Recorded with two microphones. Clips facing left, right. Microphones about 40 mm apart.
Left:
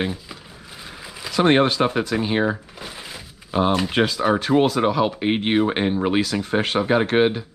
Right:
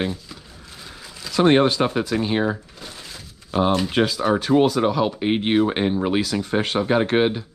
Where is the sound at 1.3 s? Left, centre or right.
Centre.